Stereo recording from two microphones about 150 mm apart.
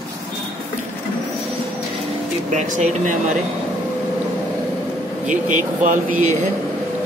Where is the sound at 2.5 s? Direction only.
55° right (ahead or behind).